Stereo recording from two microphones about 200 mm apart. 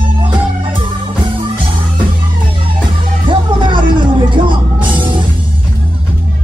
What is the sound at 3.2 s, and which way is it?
Music, 25° right (ahead or behind).